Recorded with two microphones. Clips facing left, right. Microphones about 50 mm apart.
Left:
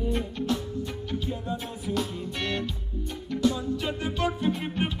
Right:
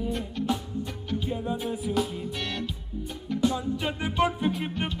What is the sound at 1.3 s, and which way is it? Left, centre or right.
Music, centre.